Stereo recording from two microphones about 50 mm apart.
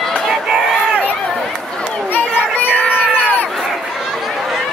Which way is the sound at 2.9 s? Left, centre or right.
Left.